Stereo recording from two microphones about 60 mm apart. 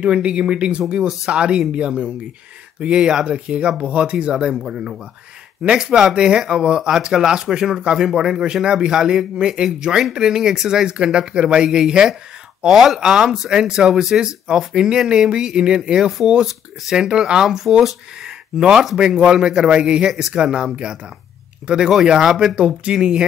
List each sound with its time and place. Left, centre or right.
0.0 s speech: centre